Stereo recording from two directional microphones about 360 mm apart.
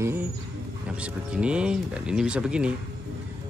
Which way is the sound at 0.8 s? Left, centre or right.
Centre.